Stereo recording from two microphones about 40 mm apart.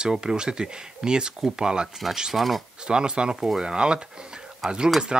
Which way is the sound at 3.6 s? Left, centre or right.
Right.